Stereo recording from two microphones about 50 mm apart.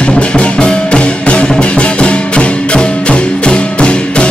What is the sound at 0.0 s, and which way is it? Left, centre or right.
Music, left.